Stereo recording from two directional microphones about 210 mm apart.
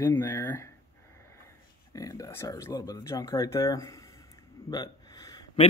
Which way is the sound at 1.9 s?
15° left (ahead or behind).